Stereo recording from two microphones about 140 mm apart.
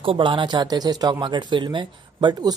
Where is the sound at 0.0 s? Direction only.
35° right (ahead or behind).